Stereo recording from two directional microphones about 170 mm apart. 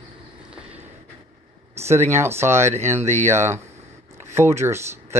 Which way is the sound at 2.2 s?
15° right (ahead or behind).